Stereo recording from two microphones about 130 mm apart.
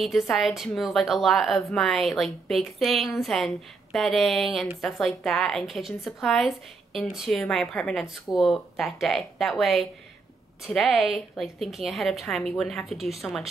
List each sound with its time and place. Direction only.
0.0 s a woman's voice: centre (ahead or behind)